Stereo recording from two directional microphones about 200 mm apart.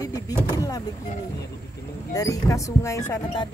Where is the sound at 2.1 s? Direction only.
15° left (ahead or behind).